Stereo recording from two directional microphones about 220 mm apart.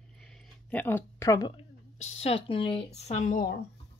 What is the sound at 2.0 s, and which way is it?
A woman's voice, 30° left (ahead or behind).